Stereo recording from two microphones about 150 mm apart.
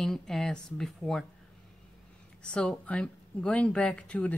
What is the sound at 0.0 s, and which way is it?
Speech, 5° left (ahead or behind).